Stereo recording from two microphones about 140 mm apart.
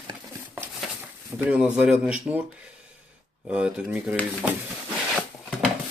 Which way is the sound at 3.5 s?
5° right (ahead or behind).